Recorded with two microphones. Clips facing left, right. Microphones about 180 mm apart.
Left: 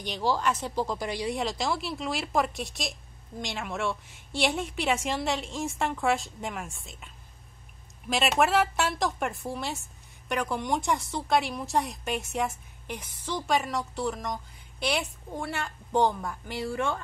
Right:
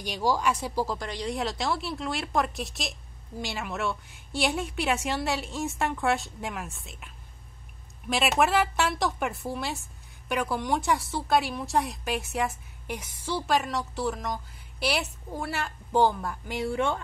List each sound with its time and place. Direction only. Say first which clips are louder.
0.0 s speech: right 1 dB; 10° right (ahead or behind)
0.9 s speech: left 1 dB; 10° left (ahead or behind)
8.1 s speech: even; centre (ahead or behind)
16.7 s speech: right 2 dB; 20° right (ahead or behind)